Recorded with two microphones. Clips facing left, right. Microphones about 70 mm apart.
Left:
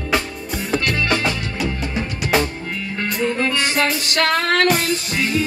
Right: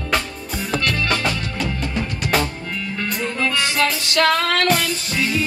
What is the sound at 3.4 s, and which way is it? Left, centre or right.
Music, left.